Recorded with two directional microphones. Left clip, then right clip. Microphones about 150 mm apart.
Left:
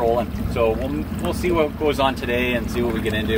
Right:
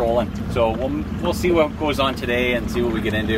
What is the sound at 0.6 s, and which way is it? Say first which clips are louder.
Speech: even; 20° right (ahead or behind).